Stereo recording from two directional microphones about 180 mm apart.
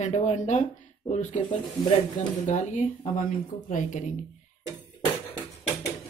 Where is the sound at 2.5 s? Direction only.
45° left (ahead or behind).